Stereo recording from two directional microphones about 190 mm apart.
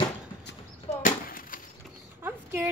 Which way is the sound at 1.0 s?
45° left (ahead or behind).